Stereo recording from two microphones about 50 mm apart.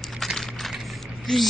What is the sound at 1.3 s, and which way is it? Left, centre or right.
Speech, centre.